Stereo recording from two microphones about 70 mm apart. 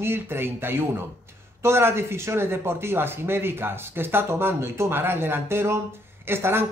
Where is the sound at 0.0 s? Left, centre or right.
Right.